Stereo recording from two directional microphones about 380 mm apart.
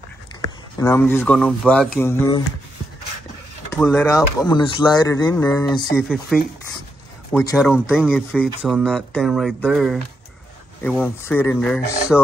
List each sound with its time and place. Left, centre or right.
0.7 s speech: centre
3.7 s speech: centre
7.5 s speech: centre